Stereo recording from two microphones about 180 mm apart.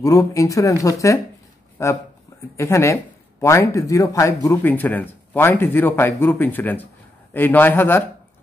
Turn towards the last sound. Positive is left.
turn(degrees=10)  # may be behind; listen again after turning